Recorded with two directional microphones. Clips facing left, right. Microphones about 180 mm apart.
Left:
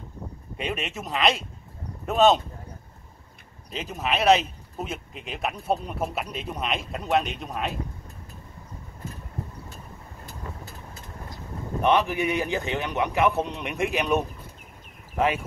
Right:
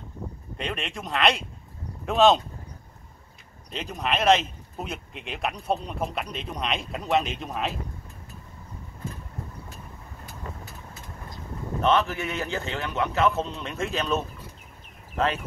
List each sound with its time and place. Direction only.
0.6 s speech: 5° left (ahead or behind)
3.7 s speech: 5° left (ahead or behind)
11.8 s a man's voice: 15° left (ahead or behind)